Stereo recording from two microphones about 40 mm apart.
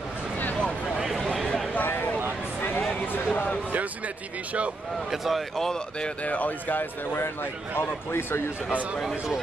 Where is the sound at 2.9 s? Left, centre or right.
Left.